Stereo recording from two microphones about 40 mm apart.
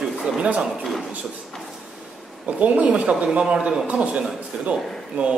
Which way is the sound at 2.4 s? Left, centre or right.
Right.